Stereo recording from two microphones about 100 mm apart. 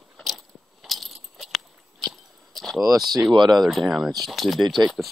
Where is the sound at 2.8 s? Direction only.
40° right (ahead or behind).